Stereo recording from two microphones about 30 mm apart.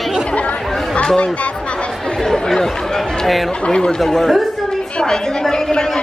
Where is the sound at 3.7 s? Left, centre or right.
Left.